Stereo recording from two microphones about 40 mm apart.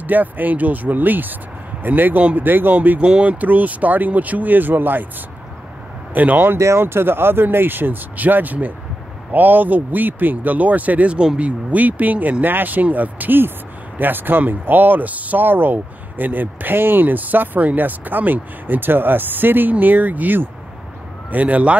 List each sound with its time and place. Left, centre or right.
0.0 s speech: right
6.1 s speech: right
6.5 s speech: right
21.3 s speech: right